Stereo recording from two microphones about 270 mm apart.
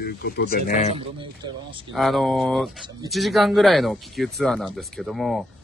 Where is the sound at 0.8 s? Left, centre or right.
Centre.